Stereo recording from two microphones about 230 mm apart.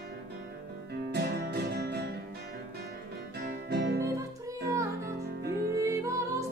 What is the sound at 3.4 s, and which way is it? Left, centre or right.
Music, right.